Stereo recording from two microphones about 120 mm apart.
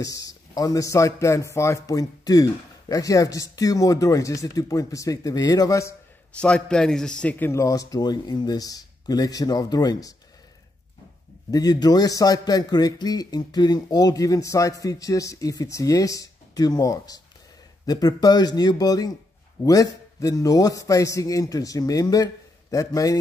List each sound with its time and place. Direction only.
0.0 s a man's voice: 30° left (ahead or behind)
6.4 s a man's voice: 10° left (ahead or behind); by 10.1 s 30° left (ahead or behind)
11.5 s a man's voice: 35° left (ahead or behind)